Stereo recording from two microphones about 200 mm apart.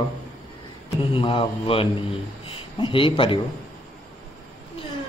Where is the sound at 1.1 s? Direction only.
25° left (ahead or behind).